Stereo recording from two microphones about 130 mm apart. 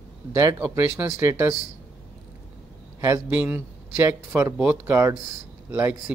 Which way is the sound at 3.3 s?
10° right (ahead or behind).